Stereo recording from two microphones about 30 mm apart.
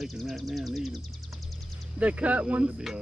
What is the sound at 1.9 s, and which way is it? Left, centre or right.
Speech, right.